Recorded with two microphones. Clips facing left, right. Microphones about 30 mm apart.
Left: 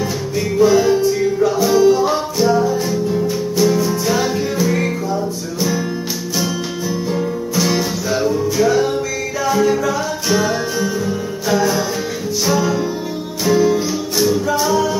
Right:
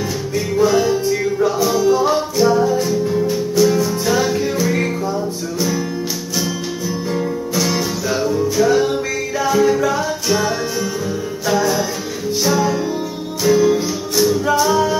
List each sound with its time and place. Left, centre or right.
0.6 s music: centre
7.5 s music: centre
9.8 s music: centre
10.2 s music: centre
14.7 s music: centre